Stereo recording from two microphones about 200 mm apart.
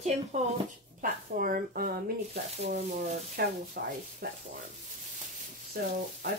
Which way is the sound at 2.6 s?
35° right (ahead or behind).